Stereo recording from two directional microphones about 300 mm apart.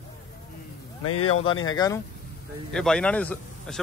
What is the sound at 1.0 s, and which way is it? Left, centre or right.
Speech, left.